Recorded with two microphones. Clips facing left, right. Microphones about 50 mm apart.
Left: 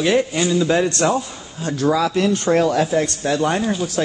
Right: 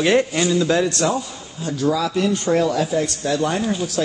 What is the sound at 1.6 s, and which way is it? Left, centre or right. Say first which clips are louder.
Speech: left 2 dB; left.